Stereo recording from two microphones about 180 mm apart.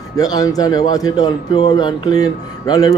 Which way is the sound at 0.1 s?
20° left (ahead or behind).